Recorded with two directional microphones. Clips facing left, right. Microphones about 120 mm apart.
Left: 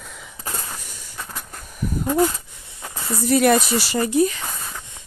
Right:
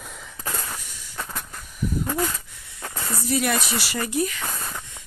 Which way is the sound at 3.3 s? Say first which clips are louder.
Left 8 dB; 50° left (ahead or behind).